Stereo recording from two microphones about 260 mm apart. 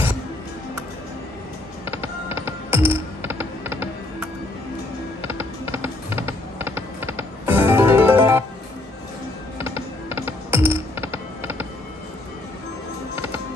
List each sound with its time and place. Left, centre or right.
1.9 s music: centre
5.2 s typing: centre
9.6 s music: centre
13.1 s music: centre